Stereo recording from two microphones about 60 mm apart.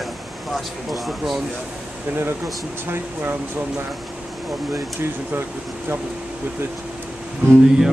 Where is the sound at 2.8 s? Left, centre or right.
Right.